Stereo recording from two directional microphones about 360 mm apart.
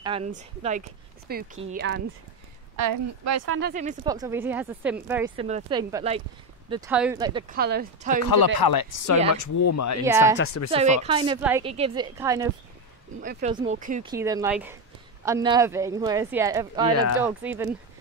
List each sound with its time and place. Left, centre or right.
0.0 s speech: centre
2.7 s speech: right
3.5 s speech: right
7.5 s speech: right
8.3 s speech: left
9.3 s speech: left
10.3 s speech: left
10.7 s speech: centre
13.2 s speech: right
14.1 s speech: centre